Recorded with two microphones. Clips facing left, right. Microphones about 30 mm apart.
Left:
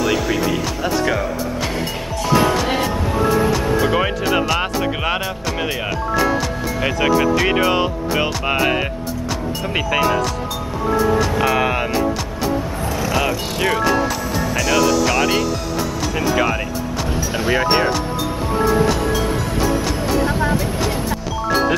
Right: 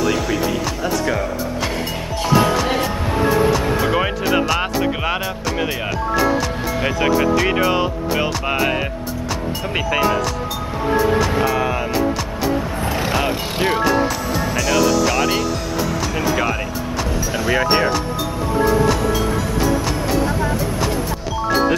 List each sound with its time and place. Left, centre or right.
0.0 s speech: centre
2.2 s music: centre
3.3 s music: centre
3.8 s speech: centre
6.8 s speech: centre
11.5 s speech: left
12.8 s vehicle: right
13.2 s speech: right
14.3 s speech: centre
20.2 s vehicle: left